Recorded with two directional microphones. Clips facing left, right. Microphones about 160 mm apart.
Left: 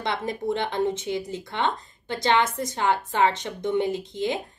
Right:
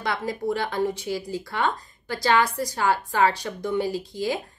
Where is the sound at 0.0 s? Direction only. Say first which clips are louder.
Even; 25° left (ahead or behind).